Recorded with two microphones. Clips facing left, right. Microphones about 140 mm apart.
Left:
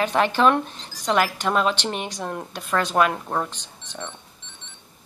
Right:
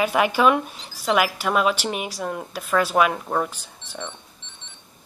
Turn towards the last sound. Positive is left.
turn(degrees=-5)  # may be behind; listen again after turning